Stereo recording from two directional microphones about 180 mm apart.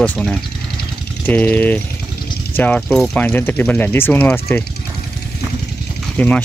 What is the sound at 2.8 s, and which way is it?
Speech, centre (ahead or behind).